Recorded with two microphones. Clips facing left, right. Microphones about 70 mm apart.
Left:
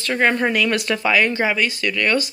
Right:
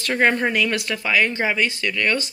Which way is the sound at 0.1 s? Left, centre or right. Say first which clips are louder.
Left 1 dB; centre.